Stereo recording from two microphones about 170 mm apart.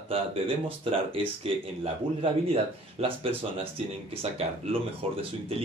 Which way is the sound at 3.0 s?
35° right (ahead or behind).